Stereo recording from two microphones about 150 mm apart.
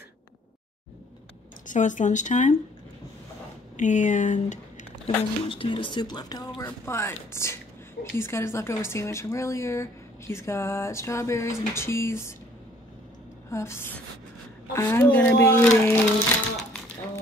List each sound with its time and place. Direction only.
1.7 s speech: 55° left (ahead or behind)
3.7 s speech: 55° left (ahead or behind)
5.0 s speech: 35° left (ahead or behind); by 12.4 s 15° left (ahead or behind)
13.5 s speech: 20° left (ahead or behind)